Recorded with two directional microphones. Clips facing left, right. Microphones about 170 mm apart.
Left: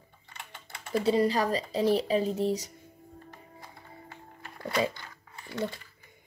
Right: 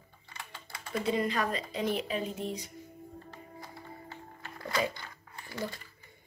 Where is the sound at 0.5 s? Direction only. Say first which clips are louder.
Left 6 dB; 30° left (ahead or behind).